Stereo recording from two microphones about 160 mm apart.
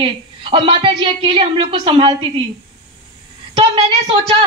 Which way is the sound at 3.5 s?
35° right (ahead or behind).